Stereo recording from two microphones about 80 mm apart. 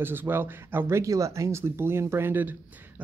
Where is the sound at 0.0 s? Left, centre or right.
Right.